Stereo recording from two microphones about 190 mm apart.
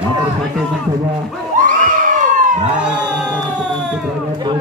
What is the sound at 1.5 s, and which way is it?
Crowd, 45° right (ahead or behind).